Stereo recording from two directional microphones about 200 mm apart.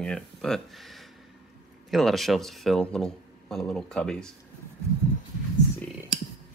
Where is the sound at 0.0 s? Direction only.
5° left (ahead or behind).